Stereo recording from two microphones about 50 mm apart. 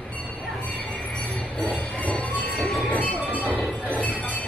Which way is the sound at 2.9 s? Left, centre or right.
Left.